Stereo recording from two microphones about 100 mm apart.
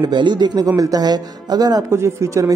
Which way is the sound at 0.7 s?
35° right (ahead or behind).